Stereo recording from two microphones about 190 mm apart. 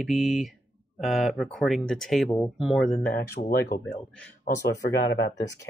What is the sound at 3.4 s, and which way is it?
Speech, 55° left (ahead or behind).